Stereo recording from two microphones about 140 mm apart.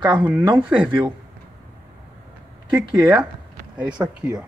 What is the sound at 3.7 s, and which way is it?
Speech, 10° right (ahead or behind).